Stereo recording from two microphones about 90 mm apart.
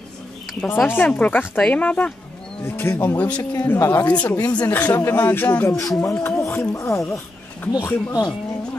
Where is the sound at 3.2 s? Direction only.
15° left (ahead or behind).